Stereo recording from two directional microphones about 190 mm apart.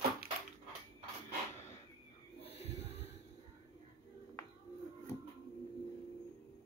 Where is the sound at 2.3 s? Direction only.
30° left (ahead or behind).